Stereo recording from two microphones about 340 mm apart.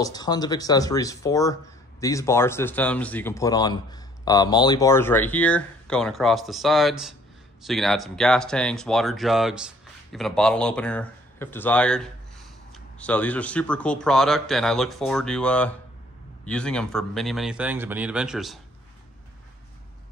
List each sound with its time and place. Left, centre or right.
0.0 s speech: centre